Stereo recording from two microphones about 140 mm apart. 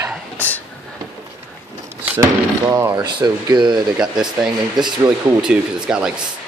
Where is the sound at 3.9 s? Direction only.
5° right (ahead or behind).